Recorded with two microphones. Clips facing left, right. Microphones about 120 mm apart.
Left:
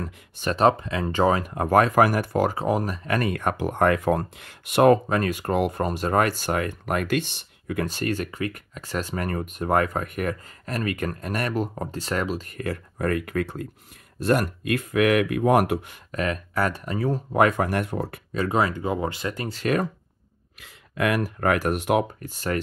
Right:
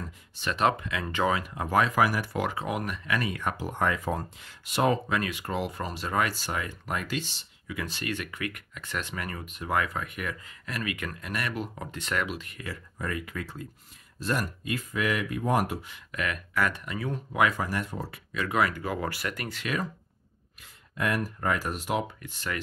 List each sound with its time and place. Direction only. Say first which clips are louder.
0.4 s speech: left 6 dB; 40° left (ahead or behind)
3.2 s speech: left 8 dB; 55° left (ahead or behind)
5.0 s speech: left 6 dB; 45° left (ahead or behind); by 16.0 s 65° left (ahead or behind)
16.1 s speech: left 6 dB; 35° left (ahead or behind); by 18.2 s 60° left (ahead or behind)
18.3 s speech: left 4 dB; 35° left (ahead or behind)
19.6 s speech: left 8 dB; 50° left (ahead or behind)
20.6 s speech: left 6 dB; 90° left; by 22.0 s 60° left (ahead or behind)
22.2 s speech: left 7 dB; 40° left (ahead or behind)